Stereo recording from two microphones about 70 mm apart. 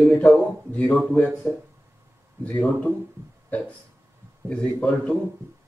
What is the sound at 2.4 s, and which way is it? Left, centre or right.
A man's voice, left.